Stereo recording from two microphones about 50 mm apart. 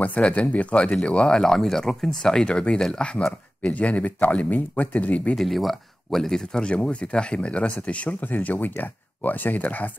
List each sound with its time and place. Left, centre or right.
0.0 s speech: left
1.0 s speech: centre
2.4 s speech: centre
4.0 s speech: left
5.3 s speech: centre
6.6 s speech: left